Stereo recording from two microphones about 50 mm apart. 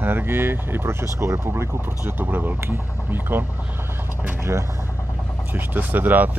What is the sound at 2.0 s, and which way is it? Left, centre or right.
Speech, right.